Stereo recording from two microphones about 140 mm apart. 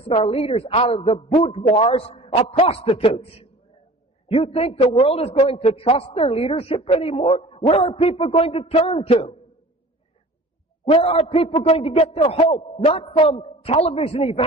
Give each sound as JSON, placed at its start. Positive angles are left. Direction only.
{"t": 0.0, "sound": "a man's voice", "side_deg": 45}
{"t": 10.9, "sound": "a man's voice", "side_deg": 45}
{"t": 11.6, "sound": "a man's voice", "side_deg": 50}